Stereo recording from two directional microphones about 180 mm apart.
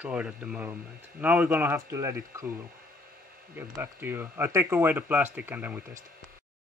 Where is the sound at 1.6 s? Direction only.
20° right (ahead or behind).